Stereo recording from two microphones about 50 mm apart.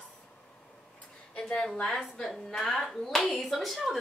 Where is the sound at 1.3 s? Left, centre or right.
Left.